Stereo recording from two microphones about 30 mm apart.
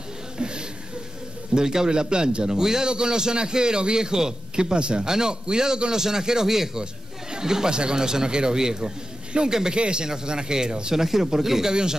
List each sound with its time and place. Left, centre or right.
0.4 s a sound: right
1.5 s speech: right
4.7 s speech: right
5.0 s a man's voice: right
6.8 s speech: right
9.8 s a man's voice: right; by 11.7 s centre
11.7 s speech: right